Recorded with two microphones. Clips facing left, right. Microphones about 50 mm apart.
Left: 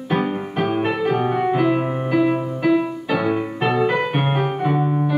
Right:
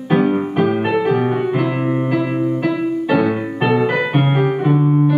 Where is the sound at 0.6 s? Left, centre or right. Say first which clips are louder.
Right 1 dB; centre.